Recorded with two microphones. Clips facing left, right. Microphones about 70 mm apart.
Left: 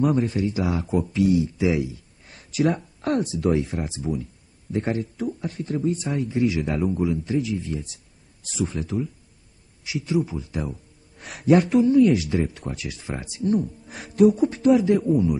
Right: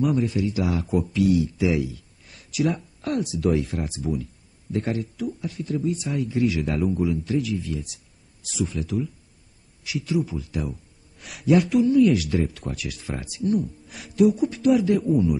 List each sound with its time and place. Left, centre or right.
0.0 s a man's voice: left